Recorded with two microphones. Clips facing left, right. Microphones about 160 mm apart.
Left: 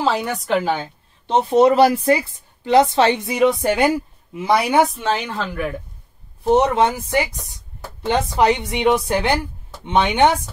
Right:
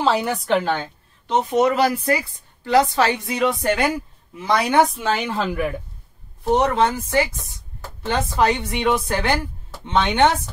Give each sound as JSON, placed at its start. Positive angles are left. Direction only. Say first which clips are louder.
{"t": 0.0, "sound": "speech", "louder": "right 1 dB", "side_deg": 0}
{"t": 1.2, "sound": "speech", "louder": "left 4 dB", "side_deg": 30}
{"t": 4.9, "sound": "speech", "louder": "even", "side_deg": 0}
{"t": 6.6, "sound": "speech", "louder": "left 1 dB", "side_deg": 15}